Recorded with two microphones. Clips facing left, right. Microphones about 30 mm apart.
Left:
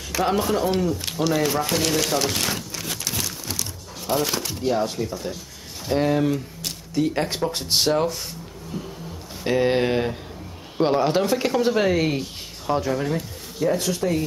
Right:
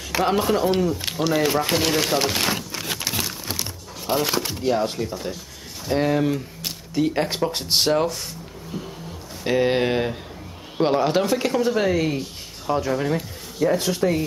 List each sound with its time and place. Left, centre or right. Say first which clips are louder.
0.2 s speech: right 1 dB; centre
9.4 s speech: even; centre
12.6 s speech: even; centre
13.0 s speech: right 2 dB; centre